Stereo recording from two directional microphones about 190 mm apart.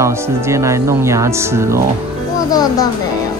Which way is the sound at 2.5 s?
20° left (ahead or behind).